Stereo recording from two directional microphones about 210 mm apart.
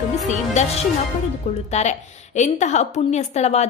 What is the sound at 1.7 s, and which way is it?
A woman's voice, 35° left (ahead or behind).